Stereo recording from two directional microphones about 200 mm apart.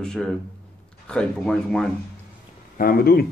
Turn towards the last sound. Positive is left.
turn(degrees=50)  # may be behind; listen again after turning